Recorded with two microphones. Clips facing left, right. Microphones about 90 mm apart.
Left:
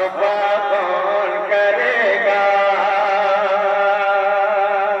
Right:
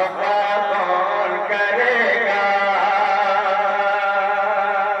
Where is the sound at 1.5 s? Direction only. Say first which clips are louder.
Left 4 dB; 20° right (ahead or behind).